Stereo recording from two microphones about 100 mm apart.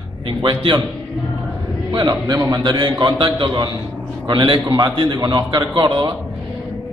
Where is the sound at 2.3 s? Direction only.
30° right (ahead or behind).